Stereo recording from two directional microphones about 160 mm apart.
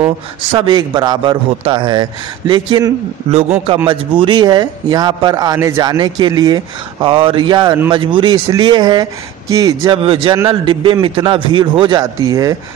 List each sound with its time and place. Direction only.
0.5 s a man's voice: 30° right (ahead or behind)